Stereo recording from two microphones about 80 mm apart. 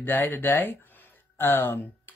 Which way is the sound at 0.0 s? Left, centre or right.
Left.